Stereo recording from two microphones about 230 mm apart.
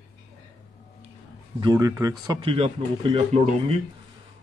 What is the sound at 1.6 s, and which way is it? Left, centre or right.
Speech, centre.